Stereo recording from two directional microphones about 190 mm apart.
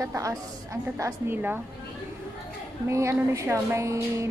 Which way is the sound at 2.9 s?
15° right (ahead or behind).